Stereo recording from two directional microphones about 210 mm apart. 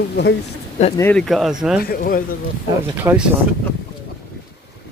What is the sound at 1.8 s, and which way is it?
Speech, 45° left (ahead or behind).